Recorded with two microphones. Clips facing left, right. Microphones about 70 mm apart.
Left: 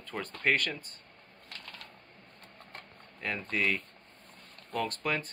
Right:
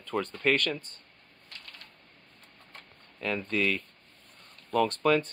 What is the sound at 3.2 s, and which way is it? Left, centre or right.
Speech, centre.